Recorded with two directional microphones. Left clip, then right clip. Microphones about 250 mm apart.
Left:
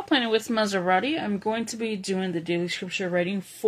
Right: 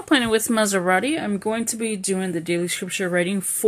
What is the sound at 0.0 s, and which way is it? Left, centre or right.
A woman's voice, right.